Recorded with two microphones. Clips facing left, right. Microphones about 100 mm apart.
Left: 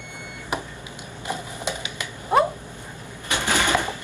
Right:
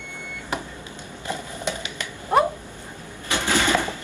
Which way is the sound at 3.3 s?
15° left (ahead or behind).